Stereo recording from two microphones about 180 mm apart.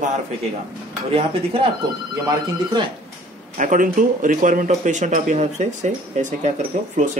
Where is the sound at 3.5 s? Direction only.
45° right (ahead or behind).